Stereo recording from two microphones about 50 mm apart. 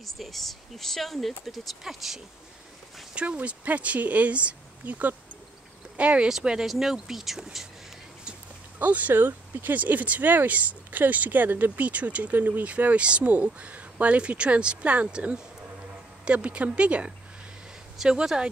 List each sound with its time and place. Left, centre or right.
0.0 s speech: centre
3.3 s speech: right
4.8 s speech: right
5.9 s speech: right; by 7.4 s centre
8.7 s speech: right
16.3 s speech: right
17.9 s speech: centre